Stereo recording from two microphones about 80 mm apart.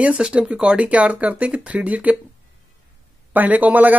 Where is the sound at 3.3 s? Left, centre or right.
Right.